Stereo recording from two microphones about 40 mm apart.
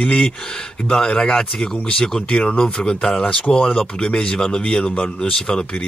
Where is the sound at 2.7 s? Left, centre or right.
Centre.